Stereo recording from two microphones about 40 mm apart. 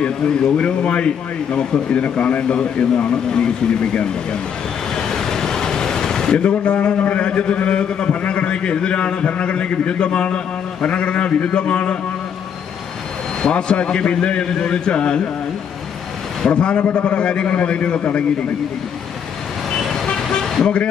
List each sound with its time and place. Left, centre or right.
0.6 s a man's voice: left
4.9 s waves: centre
6.3 s a man's voice: left
13.4 s a man's voice: left
16.4 s a man's voice: left
19.9 s vehicle: centre